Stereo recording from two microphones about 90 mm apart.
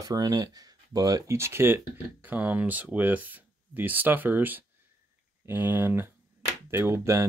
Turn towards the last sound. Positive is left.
turn(degrees=-30)  # may be behind; listen again after turning